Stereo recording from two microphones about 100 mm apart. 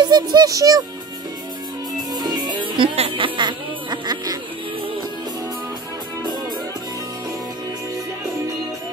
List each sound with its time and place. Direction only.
0.0 s speech: 45° right (ahead or behind)
2.1 s music: 45° right (ahead or behind)
3.0 s speech: 60° right (ahead or behind); by 4.4 s 45° right (ahead or behind)